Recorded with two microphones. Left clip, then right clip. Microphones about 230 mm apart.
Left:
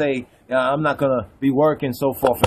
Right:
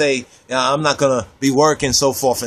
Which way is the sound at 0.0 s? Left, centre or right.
Centre.